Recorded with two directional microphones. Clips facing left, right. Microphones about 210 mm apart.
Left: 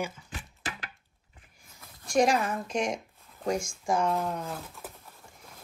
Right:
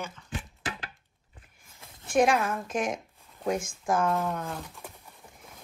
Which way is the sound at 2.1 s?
Centre (ahead or behind).